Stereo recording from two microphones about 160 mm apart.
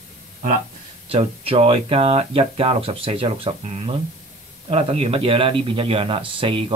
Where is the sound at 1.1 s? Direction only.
40° right (ahead or behind).